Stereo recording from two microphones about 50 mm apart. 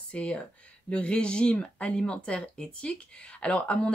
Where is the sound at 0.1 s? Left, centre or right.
Left.